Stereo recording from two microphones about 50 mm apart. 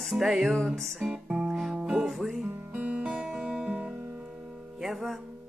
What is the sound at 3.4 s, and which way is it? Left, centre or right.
Guitar, centre.